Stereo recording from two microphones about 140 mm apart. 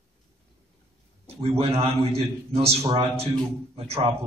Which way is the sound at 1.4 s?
45° right (ahead or behind).